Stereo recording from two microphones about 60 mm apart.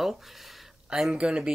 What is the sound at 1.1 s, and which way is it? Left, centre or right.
Speech, centre.